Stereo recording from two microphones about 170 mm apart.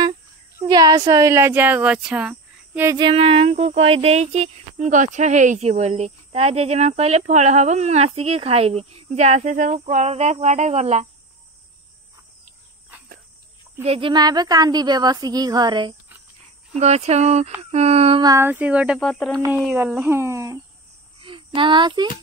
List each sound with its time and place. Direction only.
0.7 s speech: 25° right (ahead or behind)
3.0 s speech: 30° right (ahead or behind)
13.8 s a woman's voice: 30° right (ahead or behind)
16.7 s speech: 40° right (ahead or behind)
18.2 s speech: 15° right (ahead or behind)
18.9 s speech: 5° left (ahead or behind)
19.7 s speech: 5° right (ahead or behind)
21.2 s child singing: 30° right (ahead or behind)